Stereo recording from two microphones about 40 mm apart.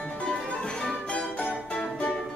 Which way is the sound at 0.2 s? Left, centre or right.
Left.